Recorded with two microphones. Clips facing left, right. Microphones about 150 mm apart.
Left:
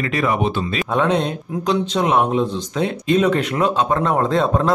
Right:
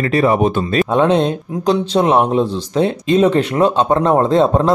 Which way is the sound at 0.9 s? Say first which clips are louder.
Right 4 dB; 25° right (ahead or behind).